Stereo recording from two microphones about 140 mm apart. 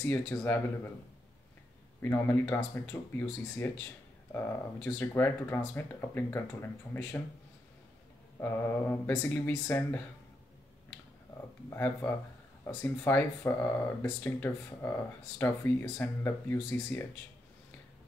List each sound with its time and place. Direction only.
0.0 s speech: 15° left (ahead or behind)
2.0 s speech: 15° left (ahead or behind)
8.4 s speech: 15° left (ahead or behind)
11.7 s speech: 15° left (ahead or behind)